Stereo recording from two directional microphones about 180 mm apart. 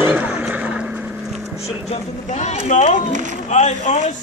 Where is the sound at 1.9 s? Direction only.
40° left (ahead or behind).